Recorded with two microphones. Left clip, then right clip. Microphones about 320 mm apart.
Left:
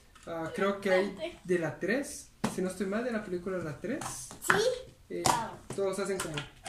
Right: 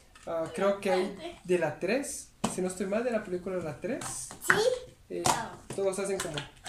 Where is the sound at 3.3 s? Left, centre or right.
Right.